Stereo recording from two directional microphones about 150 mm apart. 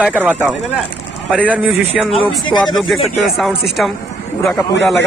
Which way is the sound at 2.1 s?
30° left (ahead or behind).